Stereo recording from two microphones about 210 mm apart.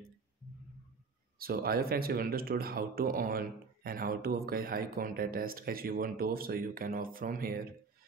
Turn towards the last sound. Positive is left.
turn(degrees=-40)  # may be behind; listen again after turning